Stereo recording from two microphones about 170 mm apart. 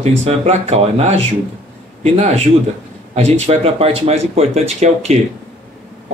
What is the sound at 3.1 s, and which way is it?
Speech, 40° right (ahead or behind).